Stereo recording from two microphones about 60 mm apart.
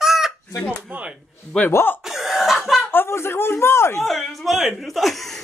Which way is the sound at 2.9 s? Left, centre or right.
Left.